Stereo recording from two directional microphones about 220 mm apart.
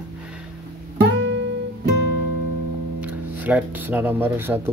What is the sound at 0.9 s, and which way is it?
Guitar, 55° right (ahead or behind).